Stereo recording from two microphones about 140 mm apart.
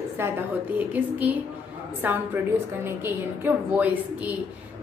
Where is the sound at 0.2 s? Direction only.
15° right (ahead or behind).